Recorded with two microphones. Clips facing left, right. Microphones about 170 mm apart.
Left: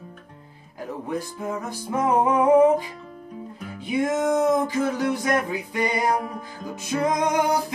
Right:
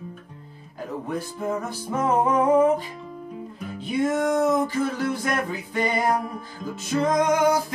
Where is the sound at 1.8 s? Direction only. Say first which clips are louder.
Left 2 dB; 15° left (ahead or behind).